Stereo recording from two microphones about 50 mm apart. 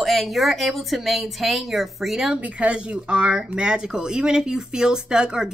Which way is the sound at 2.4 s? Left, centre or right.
Right.